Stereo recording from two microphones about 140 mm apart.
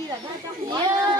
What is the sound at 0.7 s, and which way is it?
Speech, 30° right (ahead or behind).